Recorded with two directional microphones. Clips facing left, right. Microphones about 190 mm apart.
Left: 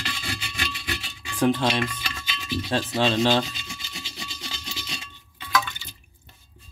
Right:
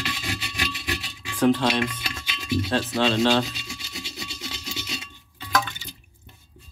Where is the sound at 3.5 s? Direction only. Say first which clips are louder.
Right 2 dB; 5° right (ahead or behind).